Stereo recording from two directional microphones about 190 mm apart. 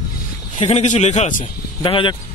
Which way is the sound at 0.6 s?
35° left (ahead or behind).